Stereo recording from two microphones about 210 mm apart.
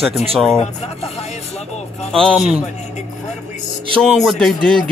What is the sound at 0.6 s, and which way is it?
Speech, 30° left (ahead or behind).